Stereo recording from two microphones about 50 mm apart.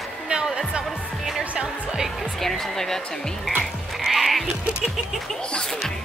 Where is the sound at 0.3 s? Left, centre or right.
Right.